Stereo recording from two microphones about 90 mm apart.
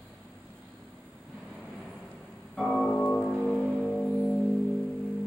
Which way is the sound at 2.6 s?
5° left (ahead or behind).